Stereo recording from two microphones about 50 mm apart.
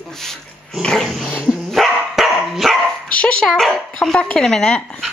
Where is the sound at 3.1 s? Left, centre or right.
Left.